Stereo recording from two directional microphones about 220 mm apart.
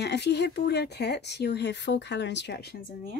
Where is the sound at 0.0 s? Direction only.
50° left (ahead or behind).